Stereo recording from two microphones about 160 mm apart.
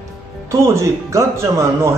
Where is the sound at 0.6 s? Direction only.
15° right (ahead or behind).